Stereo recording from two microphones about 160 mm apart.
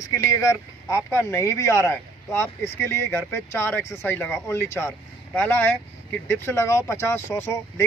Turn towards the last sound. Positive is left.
turn(degrees=15)  # may be behind; listen again after turning